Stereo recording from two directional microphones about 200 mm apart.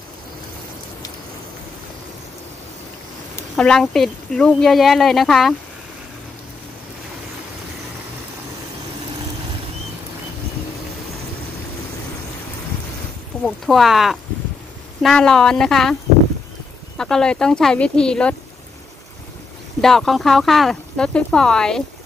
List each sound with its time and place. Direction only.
3.5 s speech: 5° left (ahead or behind)
13.4 s speech: centre (ahead or behind)
19.8 s speech: centre (ahead or behind)